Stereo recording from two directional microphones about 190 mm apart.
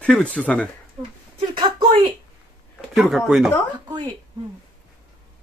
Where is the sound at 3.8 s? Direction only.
20° right (ahead or behind).